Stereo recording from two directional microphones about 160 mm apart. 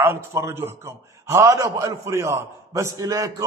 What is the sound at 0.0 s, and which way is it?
A man's voice, 15° right (ahead or behind).